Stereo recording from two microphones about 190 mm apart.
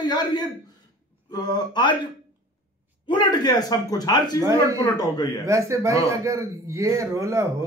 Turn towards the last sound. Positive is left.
turn(degrees=-15)  # may be behind; listen again after turning